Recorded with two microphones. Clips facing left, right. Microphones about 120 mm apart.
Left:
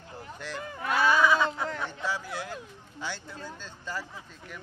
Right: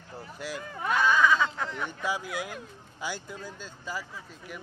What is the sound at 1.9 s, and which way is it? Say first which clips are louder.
Speech: right 1 dB; 15° right (ahead or behind).